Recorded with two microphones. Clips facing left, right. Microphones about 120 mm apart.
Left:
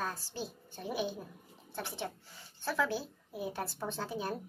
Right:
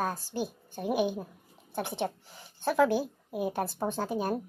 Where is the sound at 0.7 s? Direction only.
55° right (ahead or behind).